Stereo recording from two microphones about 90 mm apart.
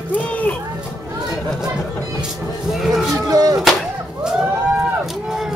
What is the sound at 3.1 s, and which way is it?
Artillery fire, 45° right (ahead or behind).